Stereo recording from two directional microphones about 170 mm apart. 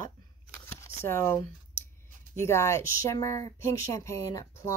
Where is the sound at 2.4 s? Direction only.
15° left (ahead or behind).